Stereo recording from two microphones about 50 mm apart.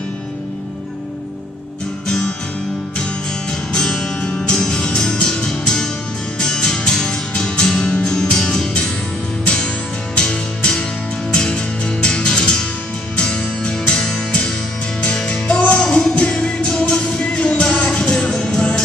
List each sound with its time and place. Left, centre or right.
2.0 s music: centre
3.7 s music: centre
10.1 s music: centre